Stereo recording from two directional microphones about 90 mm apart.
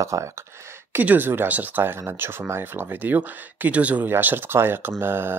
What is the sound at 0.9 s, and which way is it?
Speech, 20° right (ahead or behind).